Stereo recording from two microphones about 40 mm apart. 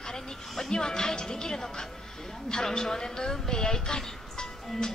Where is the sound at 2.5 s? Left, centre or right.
Centre.